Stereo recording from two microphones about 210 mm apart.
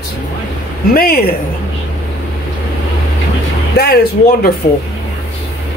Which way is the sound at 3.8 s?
50° left (ahead or behind).